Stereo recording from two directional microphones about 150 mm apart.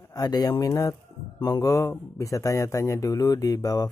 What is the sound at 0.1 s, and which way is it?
Speech, 25° left (ahead or behind).